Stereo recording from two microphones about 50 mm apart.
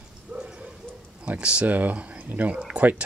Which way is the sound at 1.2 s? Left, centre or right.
Right.